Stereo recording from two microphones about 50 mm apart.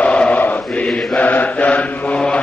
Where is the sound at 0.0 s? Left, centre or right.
Left.